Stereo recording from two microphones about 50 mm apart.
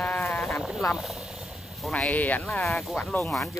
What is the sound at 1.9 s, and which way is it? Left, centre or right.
Speech, left.